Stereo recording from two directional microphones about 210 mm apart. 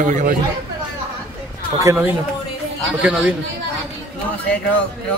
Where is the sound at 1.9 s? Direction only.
15° right (ahead or behind).